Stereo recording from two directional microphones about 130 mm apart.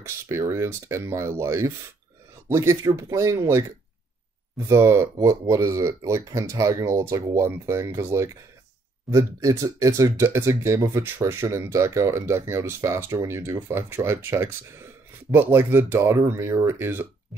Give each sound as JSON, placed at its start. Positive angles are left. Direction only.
{"t": 0.0, "sound": "speech", "side_deg": -20}